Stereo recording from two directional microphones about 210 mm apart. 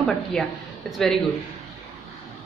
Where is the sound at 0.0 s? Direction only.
Centre (ahead or behind).